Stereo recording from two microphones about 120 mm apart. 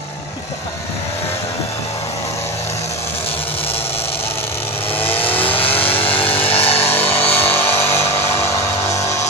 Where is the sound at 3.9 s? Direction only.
55° left (ahead or behind).